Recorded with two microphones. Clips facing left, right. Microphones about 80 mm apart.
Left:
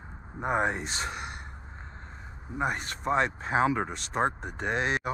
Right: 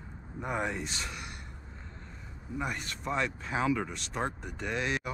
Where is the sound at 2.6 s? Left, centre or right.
Left.